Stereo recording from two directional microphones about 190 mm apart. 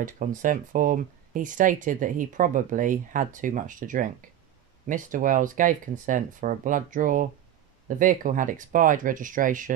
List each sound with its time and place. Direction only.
0.0 s speech: 45° right (ahead or behind)